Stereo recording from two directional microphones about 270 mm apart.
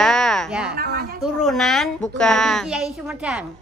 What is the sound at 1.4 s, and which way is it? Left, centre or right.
Speech, centre.